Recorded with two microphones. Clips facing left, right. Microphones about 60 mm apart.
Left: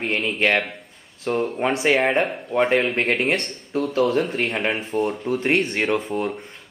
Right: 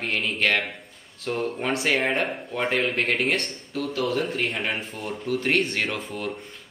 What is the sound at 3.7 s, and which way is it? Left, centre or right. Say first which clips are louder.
Speech: left 6 dB; left.